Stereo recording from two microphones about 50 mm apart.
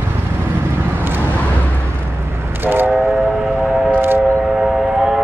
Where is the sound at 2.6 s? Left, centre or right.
Right.